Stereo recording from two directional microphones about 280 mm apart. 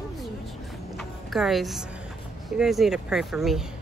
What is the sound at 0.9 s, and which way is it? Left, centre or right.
Music, centre.